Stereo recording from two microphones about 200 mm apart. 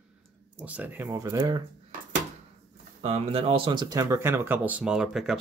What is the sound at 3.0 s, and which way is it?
Speech, 30° right (ahead or behind).